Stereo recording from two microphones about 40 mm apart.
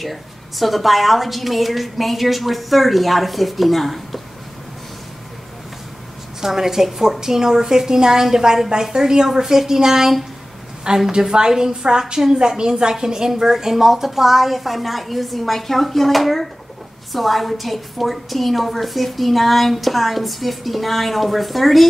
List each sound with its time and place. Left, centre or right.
0.0 s a woman's voice: centre
6.4 s a woman's voice: centre